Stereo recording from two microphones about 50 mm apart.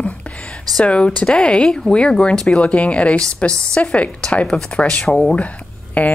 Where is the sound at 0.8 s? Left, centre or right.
Left.